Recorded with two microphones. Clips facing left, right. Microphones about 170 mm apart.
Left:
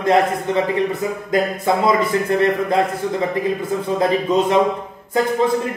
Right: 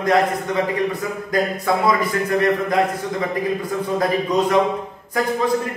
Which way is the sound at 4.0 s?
25° left (ahead or behind).